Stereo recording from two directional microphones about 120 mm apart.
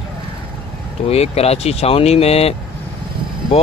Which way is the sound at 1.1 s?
60° left (ahead or behind).